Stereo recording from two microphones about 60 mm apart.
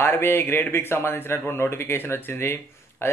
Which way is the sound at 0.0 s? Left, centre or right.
Left.